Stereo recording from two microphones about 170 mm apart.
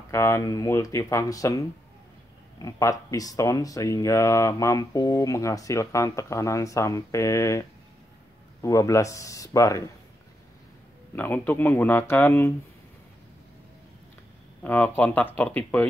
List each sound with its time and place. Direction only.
0.1 s speech: 15° left (ahead or behind)
8.6 s speech: 20° left (ahead or behind)
11.1 s speech: 10° left (ahead or behind)
14.6 s speech: 10° left (ahead or behind)